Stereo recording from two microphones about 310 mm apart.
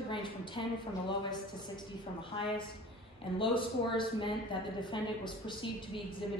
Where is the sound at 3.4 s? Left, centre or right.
Centre.